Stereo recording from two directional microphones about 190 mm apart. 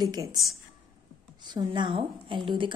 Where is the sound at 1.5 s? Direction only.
25° right (ahead or behind).